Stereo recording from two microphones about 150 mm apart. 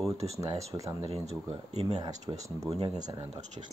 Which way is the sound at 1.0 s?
40° right (ahead or behind).